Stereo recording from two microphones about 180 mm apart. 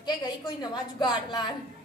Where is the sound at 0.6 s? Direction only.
25° left (ahead or behind).